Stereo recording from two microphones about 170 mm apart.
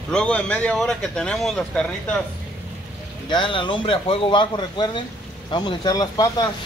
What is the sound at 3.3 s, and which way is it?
Speech, 30° left (ahead or behind).